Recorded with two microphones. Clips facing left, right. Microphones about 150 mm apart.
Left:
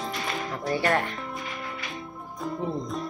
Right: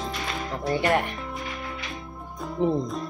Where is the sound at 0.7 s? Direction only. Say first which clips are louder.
Right 2 dB; 20° right (ahead or behind).